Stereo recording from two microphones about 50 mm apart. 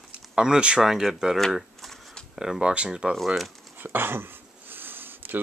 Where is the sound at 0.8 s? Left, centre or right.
Centre.